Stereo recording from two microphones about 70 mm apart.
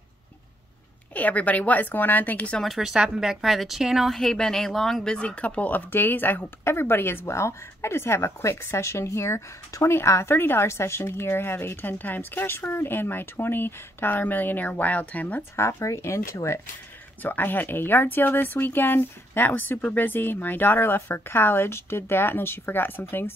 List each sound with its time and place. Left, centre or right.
1.1 s speech: left
2.6 s a woman's voice: centre; by 15.4 s left
15.5 s a woman's voice: left
17.2 s a woman's voice: left